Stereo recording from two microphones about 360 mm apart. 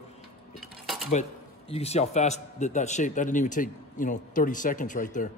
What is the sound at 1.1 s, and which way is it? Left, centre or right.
A man's voice, centre.